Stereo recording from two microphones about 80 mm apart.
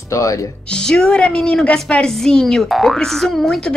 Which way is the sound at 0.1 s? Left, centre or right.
Left.